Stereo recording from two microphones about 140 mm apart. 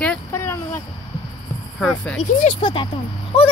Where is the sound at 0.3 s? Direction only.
20° left (ahead or behind).